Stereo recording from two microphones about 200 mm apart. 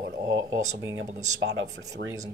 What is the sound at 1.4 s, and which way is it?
Speech, 60° right (ahead or behind).